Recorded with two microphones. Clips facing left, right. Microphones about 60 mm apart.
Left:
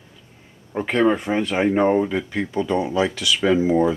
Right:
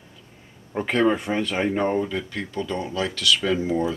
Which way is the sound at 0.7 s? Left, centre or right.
Centre.